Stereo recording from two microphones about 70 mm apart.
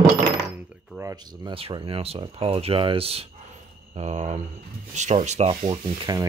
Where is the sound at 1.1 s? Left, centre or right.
Right.